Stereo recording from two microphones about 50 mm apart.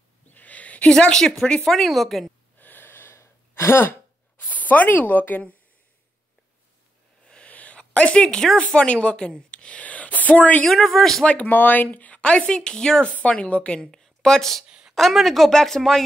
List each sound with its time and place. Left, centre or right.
0.3 s a sound: left
0.9 s a woman's voice: centre
2.6 s gasp: left
4.5 s speech: left
7.4 s a sound: left
8.5 s speech: left
9.5 s a sound: left
10.7 s speech: centre
11.2 s speech: left; by 13.1 s centre
13.1 s speech: left
14.7 s a sound: centre
15.0 s speech: centre